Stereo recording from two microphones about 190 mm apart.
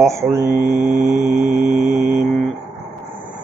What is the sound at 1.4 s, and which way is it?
Mantra, 45° right (ahead or behind).